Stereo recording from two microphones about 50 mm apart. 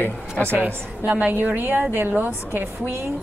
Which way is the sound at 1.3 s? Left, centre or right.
Right.